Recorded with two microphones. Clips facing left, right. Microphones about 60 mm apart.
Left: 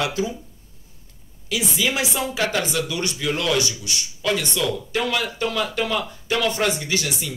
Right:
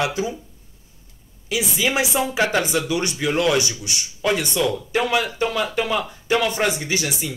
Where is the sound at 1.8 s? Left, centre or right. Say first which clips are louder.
Right 3 dB; right.